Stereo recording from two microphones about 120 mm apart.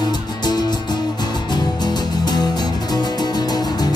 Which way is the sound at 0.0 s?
35° left (ahead or behind).